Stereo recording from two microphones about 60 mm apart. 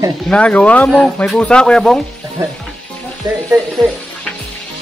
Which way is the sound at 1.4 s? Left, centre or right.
Centre.